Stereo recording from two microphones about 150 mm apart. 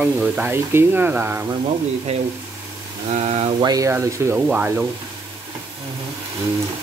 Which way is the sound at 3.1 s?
45° right (ahead or behind).